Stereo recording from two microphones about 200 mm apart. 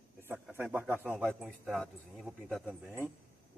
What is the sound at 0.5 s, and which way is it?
Speech, 10° right (ahead or behind).